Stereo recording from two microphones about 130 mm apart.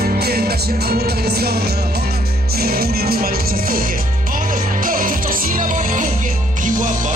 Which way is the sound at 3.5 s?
90° right.